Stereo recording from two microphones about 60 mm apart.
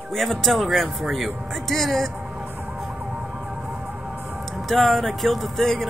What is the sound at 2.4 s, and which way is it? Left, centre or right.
Emergency vehicle, right.